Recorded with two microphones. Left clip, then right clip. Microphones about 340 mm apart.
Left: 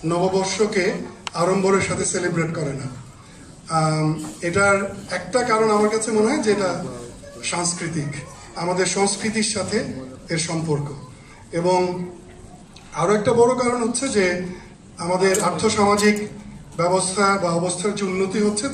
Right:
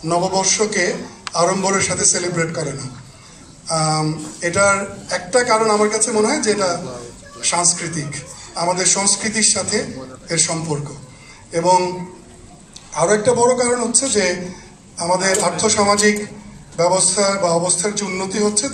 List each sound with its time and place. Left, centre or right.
0.1 s a man's voice: centre
3.6 s a man's voice: centre
12.9 s a man's voice: right